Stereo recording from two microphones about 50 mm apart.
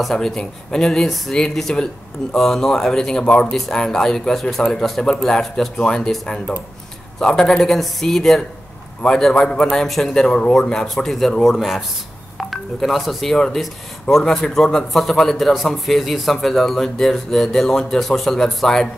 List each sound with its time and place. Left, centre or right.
0.0 s a man's voice: centre
7.2 s a man's voice: centre